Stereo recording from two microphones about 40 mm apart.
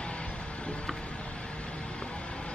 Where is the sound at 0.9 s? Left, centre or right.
Left.